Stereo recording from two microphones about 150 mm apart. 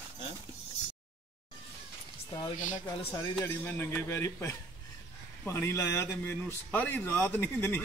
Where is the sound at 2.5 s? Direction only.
55° left (ahead or behind).